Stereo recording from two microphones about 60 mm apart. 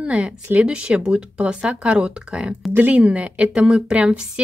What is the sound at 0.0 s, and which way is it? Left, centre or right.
A woman's voice, centre.